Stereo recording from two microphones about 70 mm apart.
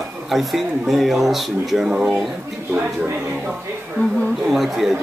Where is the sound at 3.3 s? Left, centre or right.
Centre.